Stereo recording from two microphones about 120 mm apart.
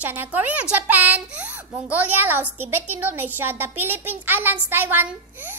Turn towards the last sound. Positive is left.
turn(degrees=-15)  # may be behind; listen again after turning